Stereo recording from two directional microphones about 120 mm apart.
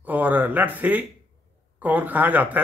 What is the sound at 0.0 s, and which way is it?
Speech, 15° right (ahead or behind).